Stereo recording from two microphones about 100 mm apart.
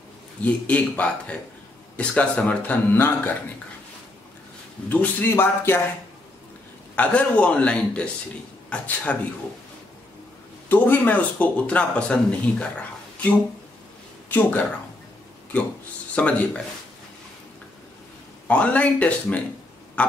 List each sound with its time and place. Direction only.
0.4 s speech: 15° left (ahead or behind)
4.8 s a man's voice: 20° left (ahead or behind)
7.0 s a man's voice: 10° left (ahead or behind)
10.7 s speech: 15° left (ahead or behind)
16.2 s speech: 15° left (ahead or behind)
18.5 s speech: 15° left (ahead or behind)